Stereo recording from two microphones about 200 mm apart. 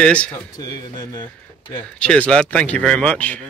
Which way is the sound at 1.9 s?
5° left (ahead or behind).